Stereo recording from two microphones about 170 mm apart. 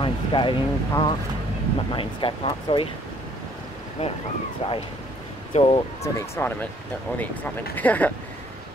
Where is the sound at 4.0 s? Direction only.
35° left (ahead or behind).